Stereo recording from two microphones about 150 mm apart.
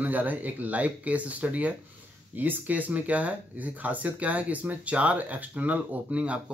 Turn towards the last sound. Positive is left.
turn(degrees=-10)  # may be behind; listen again after turning